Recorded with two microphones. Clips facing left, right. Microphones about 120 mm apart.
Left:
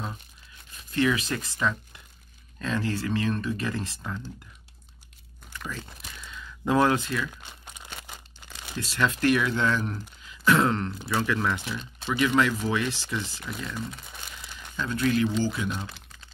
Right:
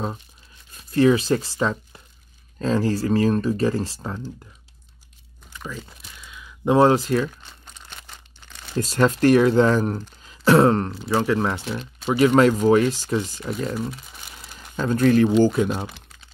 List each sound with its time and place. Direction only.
0.9 s speech: 30° right (ahead or behind)
5.5 s crumpling: 15° right (ahead or behind)
6.6 s speech: 25° right (ahead or behind)
7.6 s crumpling: 10° left (ahead or behind)
8.7 s speech: 40° right (ahead or behind)
12.3 s speech: 45° right (ahead or behind)